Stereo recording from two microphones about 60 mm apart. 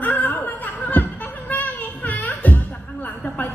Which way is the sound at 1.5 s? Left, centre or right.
Left.